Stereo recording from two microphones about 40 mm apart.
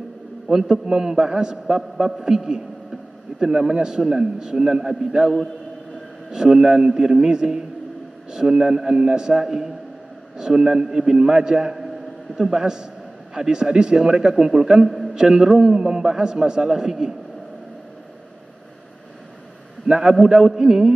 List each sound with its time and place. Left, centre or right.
0.5 s a man's voice: centre
6.3 s a man's voice: centre
20.0 s a man's voice: centre